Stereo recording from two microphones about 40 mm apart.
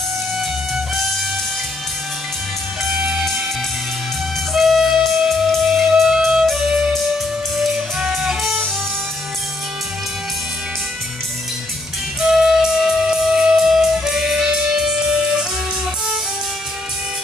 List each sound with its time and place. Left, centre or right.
4.6 s music: centre
6.4 s music: centre
8.4 s music: centre
12.2 s music: centre